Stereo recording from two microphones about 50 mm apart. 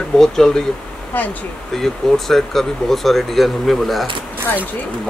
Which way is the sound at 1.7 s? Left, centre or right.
Centre.